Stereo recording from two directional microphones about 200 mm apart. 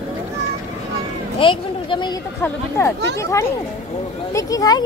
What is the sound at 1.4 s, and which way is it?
Speech, 25° left (ahead or behind).